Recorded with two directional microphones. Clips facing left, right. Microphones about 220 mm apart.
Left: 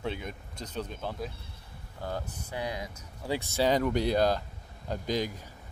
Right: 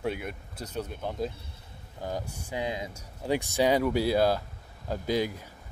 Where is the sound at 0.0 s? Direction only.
10° right (ahead or behind).